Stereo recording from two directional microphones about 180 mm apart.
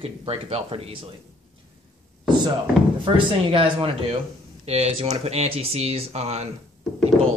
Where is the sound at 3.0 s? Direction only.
30° right (ahead or behind).